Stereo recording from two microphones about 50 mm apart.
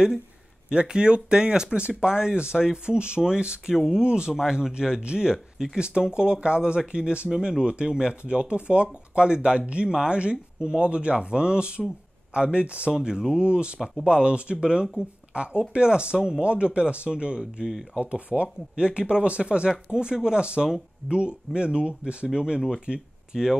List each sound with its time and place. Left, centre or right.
0.7 s speech: centre
3.7 s speech: centre
12.9 s speech: centre